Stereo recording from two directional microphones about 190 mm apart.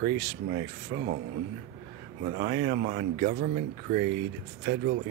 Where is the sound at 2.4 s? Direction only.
45° right (ahead or behind).